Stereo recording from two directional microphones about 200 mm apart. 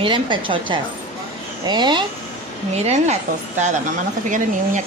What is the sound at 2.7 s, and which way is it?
Speech, 35° right (ahead or behind).